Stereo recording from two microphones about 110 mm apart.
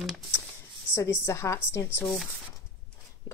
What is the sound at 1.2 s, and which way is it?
Speech, 25° left (ahead or behind).